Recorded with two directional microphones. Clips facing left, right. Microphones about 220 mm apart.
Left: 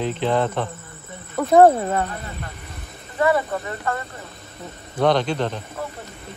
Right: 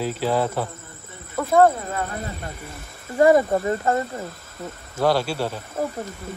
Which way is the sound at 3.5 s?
25° right (ahead or behind).